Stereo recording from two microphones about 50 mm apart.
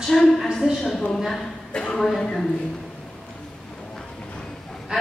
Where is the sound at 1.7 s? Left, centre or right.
Centre.